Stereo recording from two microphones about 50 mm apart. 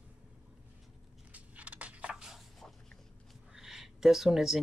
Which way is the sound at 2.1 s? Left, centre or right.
Centre.